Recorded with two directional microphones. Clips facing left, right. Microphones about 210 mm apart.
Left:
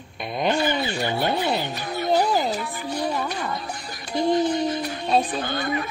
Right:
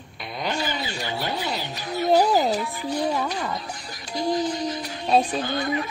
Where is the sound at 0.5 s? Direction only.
55° left (ahead or behind).